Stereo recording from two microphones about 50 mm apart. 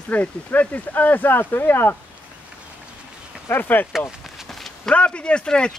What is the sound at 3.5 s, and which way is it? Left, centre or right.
Speech, left.